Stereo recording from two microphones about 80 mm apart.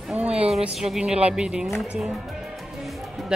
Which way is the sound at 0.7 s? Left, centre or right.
Centre.